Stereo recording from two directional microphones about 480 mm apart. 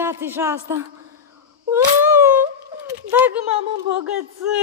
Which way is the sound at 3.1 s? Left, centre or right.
Centre.